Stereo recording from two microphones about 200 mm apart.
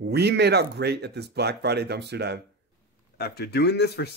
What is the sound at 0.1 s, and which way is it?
Speech, 55° right (ahead or behind).